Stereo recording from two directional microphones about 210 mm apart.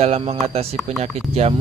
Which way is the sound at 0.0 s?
30° right (ahead or behind).